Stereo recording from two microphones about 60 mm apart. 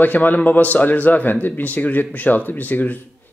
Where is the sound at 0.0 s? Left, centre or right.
Left.